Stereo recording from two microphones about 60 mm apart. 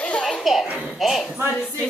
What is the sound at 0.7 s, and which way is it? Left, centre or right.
Speech, centre.